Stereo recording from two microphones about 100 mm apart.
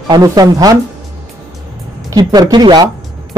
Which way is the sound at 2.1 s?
45° right (ahead or behind).